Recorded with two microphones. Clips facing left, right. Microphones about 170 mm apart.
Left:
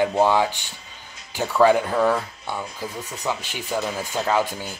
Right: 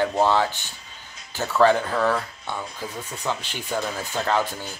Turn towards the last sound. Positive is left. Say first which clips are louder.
# left 2 dB
turn(degrees=10)  # may be behind; listen again after turning